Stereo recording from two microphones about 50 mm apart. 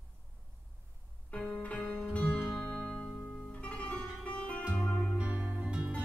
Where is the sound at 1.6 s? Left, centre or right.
Left.